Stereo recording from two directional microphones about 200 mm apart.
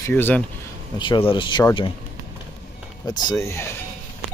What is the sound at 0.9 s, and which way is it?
Speech, 25° left (ahead or behind).